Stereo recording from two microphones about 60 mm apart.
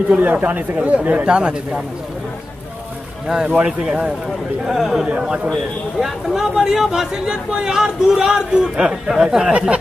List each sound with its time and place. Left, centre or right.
0.1 s speech: right
3.4 s speech: centre
4.6 s a man's voice: centre
5.0 s speech: centre
5.9 s speech: centre